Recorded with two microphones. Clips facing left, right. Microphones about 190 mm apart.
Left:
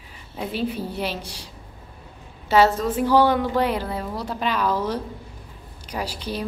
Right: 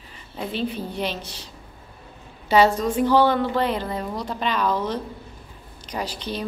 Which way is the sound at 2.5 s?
5° left (ahead or behind).